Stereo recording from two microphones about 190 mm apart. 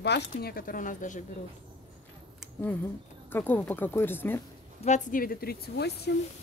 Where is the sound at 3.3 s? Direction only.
10° left (ahead or behind).